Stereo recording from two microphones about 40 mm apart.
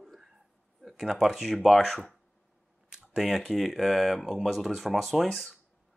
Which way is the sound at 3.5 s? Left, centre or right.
Centre.